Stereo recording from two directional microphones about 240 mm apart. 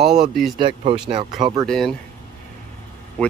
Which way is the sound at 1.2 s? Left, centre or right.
Centre.